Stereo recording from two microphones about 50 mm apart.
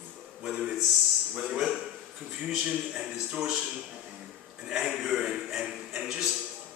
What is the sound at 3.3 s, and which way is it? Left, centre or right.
Speech, right.